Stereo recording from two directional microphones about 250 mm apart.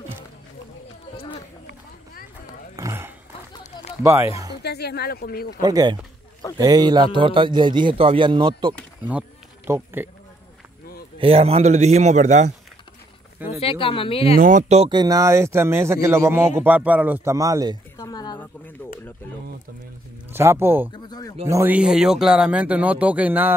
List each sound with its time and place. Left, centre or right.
2.7 s a sound: centre
4.0 s speech: centre
4.6 s speech: left
5.6 s a man's voice: centre
9.7 s speech: centre
11.1 s a man's voice: right
13.5 s speech: left
14.4 s speech: right; by 17.7 s centre
17.9 s a sound: centre
20.2 s speech: centre
20.9 s speech: centre
21.5 s speech: centre